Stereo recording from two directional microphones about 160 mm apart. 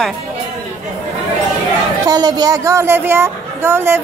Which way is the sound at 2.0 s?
25° right (ahead or behind).